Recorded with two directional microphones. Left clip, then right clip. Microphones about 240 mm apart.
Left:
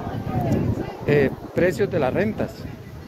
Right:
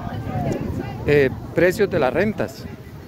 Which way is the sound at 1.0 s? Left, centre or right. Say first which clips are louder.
Right 3 dB; right.